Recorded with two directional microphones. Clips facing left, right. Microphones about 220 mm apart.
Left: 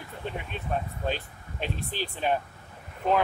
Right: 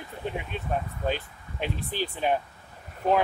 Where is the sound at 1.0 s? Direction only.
15° right (ahead or behind).